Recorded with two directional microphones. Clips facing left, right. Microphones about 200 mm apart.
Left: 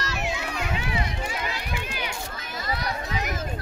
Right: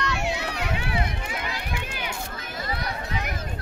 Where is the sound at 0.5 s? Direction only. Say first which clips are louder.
Even; 65° right (ahead or behind).